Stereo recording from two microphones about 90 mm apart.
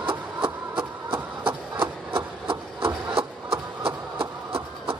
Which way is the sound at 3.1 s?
80° right.